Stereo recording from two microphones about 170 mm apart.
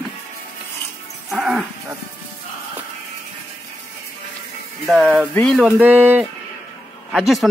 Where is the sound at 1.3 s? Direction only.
5° right (ahead or behind).